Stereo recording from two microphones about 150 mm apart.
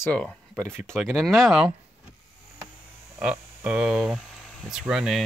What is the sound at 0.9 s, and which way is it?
Speech, centre (ahead or behind).